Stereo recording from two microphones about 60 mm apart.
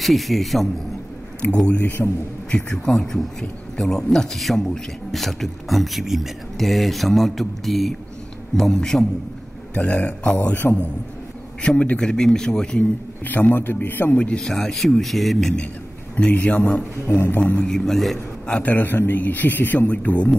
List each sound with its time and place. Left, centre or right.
0.0 s a man's voice: centre
1.4 s a man's voice: left
1.8 s a man's voice: left
2.7 s a man's voice: centre
9.8 s a man's voice: left
10.3 s a man's voice: left
11.6 s a man's voice: left
13.2 s a man's voice: left
14.1 s a man's voice: left
14.4 s a man's voice: centre
16.2 s a man's voice: left
17.6 s a man's voice: centre
18.5 s a man's voice: left